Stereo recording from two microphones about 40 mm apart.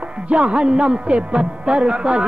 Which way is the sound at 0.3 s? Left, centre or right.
Right.